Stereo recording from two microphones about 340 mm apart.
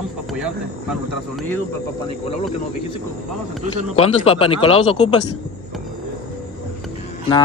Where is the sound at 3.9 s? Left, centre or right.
Centre.